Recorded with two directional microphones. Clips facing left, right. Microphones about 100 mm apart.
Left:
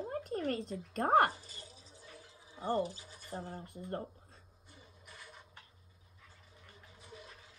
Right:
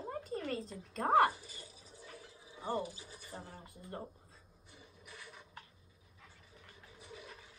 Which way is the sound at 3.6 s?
55° left (ahead or behind).